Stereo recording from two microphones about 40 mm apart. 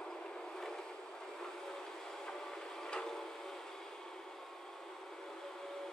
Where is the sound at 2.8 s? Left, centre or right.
Centre.